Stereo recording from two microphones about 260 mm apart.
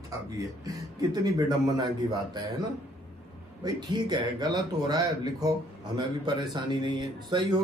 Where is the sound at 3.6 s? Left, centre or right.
Centre.